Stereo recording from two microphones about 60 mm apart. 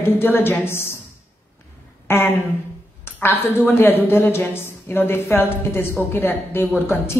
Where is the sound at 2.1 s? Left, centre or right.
Left.